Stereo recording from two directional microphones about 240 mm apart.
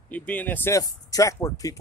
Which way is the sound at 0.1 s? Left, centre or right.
Centre.